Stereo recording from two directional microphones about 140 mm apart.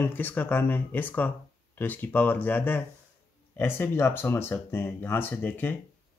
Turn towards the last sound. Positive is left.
turn(degrees=15)  # may be behind; listen again after turning